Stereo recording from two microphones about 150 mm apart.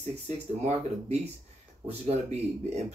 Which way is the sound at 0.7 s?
45° right (ahead or behind).